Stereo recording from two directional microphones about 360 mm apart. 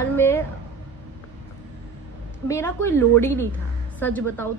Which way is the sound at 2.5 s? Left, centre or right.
Centre.